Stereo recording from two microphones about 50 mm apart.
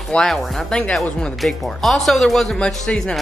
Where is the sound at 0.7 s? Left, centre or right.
Centre.